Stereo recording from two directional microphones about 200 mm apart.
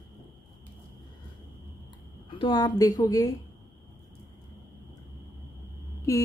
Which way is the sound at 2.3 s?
25° left (ahead or behind).